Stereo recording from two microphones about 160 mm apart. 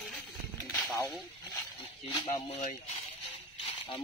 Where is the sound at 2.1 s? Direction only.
25° left (ahead or behind).